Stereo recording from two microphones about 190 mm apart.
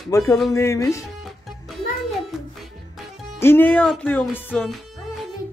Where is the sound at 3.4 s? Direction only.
10° left (ahead or behind).